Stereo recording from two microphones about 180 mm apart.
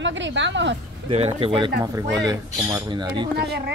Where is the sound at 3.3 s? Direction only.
65° right (ahead or behind).